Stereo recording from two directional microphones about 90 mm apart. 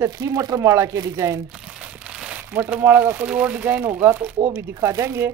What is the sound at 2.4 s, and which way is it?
Speech, 20° right (ahead or behind).